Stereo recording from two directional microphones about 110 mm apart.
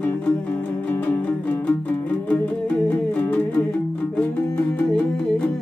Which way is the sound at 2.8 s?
15° left (ahead or behind).